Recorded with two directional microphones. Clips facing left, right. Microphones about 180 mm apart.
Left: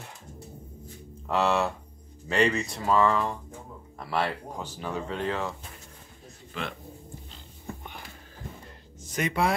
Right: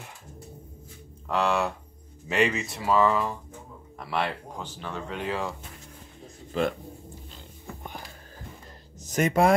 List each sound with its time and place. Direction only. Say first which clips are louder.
1.3 s speech: even; centre (ahead or behind)
5.1 s speech: right 1 dB; 5° right (ahead or behind)
9.0 s speech: right 5 dB; 45° right (ahead or behind)